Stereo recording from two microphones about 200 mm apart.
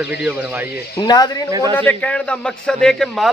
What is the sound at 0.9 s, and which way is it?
Speech, 20° left (ahead or behind).